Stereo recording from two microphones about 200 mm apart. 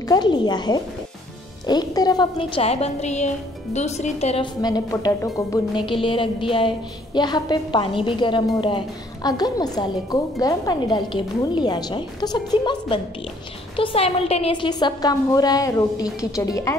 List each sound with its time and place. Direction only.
0.0 s a woman's voice: 20° left (ahead or behind)